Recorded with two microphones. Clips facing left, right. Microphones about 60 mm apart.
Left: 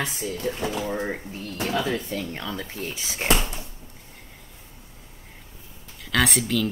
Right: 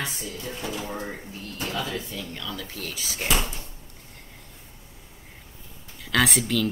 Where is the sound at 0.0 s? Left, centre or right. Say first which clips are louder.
Left 5 dB; left.